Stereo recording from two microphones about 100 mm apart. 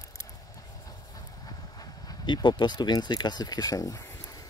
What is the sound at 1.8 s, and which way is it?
Speech, 45° left (ahead or behind).